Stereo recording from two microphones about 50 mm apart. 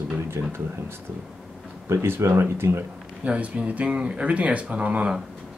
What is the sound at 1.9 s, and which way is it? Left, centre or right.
Speech, right.